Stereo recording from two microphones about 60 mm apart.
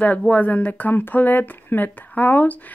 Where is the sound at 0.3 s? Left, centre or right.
Left.